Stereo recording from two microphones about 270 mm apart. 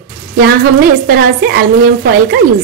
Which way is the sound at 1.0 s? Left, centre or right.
Right.